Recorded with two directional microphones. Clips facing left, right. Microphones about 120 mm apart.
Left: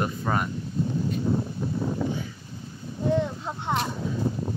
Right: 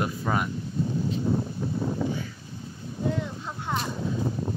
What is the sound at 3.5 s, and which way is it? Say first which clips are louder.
Vehicle: left 3 dB; 30° left (ahead or behind).